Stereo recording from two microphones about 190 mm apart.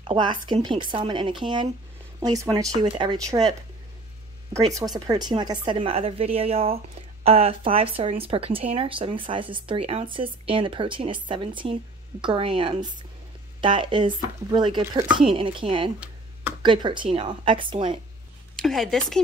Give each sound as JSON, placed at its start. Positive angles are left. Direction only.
{"t": 0.0, "sound": "speech", "side_deg": -25}
{"t": 4.7, "sound": "speech", "side_deg": -20}
{"t": 18.6, "sound": "speech", "side_deg": 0}